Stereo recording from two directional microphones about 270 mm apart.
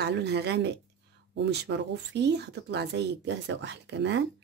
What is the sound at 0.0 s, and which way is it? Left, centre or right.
Speech, right.